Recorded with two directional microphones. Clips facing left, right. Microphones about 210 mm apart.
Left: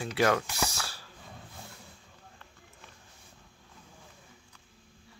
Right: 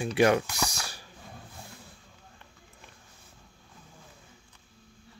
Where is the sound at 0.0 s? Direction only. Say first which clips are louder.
Right 4 dB; 15° right (ahead or behind).